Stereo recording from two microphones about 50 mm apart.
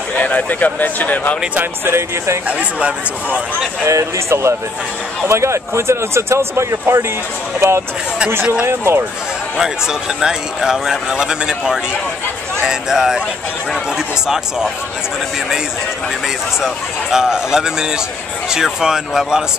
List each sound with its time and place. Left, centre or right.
0.2 s speech: left
1.9 s speech: right
3.8 s speech: right
8.6 s speech: right
10.2 s speech: centre
14.2 s speech: centre
16.6 s speech: centre